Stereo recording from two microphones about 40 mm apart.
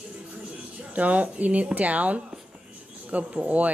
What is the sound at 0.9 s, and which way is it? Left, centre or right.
Speech, right.